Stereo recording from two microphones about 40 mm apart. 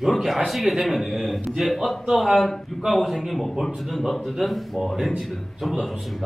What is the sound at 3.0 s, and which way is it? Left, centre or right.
A man's voice, centre.